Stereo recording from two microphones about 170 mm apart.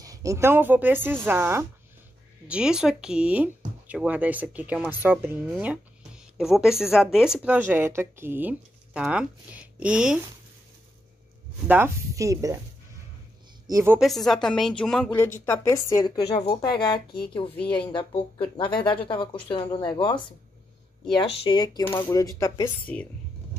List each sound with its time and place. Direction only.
0.0 s speech: 20° right (ahead or behind)
11.6 s speech: 10° right (ahead or behind)
13.7 s a woman's voice: 20° right (ahead or behind)
13.9 s a woman's voice: centre (ahead or behind); by 16.1 s 20° left (ahead or behind)
16.2 s a woman's voice: 35° left (ahead or behind)
22.9 s a woman's voice: 10° left (ahead or behind)